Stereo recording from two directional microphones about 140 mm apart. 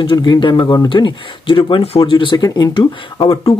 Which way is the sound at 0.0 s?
35° left (ahead or behind).